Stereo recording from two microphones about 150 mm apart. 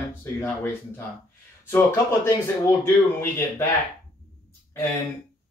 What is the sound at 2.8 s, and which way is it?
Speech, 15° left (ahead or behind).